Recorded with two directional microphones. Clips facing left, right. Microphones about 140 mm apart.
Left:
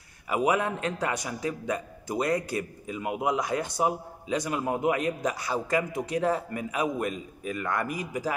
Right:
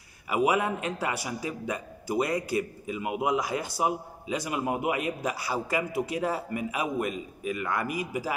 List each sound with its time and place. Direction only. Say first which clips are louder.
0.3 s a man's voice: even; 5° right (ahead or behind)